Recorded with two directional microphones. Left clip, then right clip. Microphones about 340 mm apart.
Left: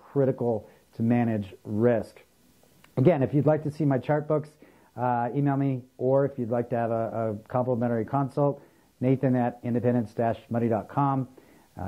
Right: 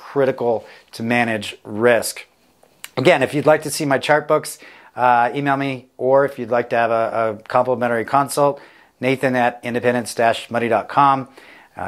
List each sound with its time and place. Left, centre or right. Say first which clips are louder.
0.0 s a sound: right 8 dB; centre
0.4 s speech: right 9 dB; centre
0.9 s speech: right 9 dB; centre